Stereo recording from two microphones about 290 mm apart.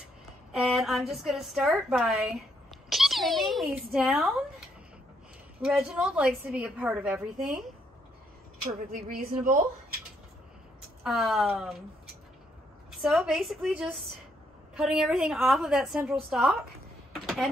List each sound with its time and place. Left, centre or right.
0.5 s a woman's voice: centre
8.6 s a woman's voice: right
11.1 s a woman's voice: centre
13.0 s a woman's voice: centre
17.1 s a sound: centre